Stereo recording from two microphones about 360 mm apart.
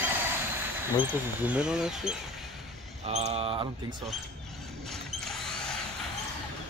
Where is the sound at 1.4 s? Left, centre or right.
Centre.